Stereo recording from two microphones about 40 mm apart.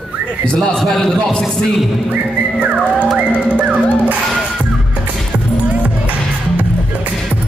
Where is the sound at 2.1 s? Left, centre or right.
Right.